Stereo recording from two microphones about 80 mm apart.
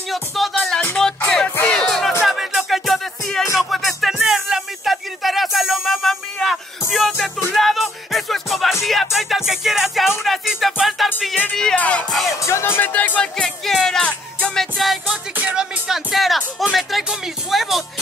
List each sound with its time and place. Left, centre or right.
0.1 s music: centre
11.5 s music: centre
12.1 s music: centre
12.4 s speech: left
13.4 s music: centre